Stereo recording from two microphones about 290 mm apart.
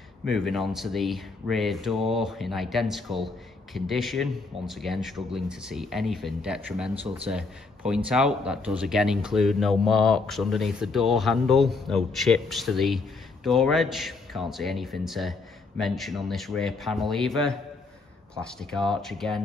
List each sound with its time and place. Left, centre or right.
0.2 s a man's voice: centre